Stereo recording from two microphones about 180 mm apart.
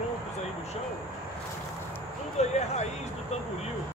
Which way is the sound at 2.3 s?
35° left (ahead or behind).